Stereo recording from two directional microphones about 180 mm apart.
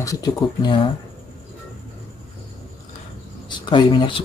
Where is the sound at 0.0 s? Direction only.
20° left (ahead or behind).